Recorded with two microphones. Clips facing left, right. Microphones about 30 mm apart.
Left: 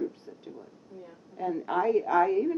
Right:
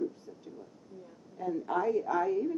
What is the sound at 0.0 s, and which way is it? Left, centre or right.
A woman's voice, left.